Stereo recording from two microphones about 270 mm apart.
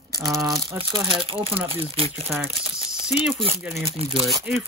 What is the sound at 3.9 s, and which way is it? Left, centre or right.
Speech, right.